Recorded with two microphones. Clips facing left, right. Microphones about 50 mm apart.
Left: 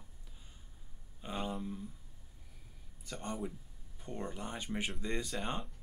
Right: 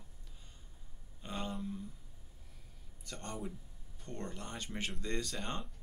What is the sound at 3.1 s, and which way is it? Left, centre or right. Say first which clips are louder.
Speech: left 3 dB; centre.